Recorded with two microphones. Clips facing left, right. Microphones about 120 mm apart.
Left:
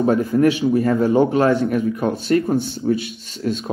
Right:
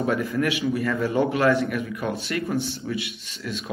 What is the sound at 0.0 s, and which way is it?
A man's voice, 30° left (ahead or behind).